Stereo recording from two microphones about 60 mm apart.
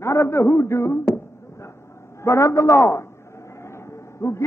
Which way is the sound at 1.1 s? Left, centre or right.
Left.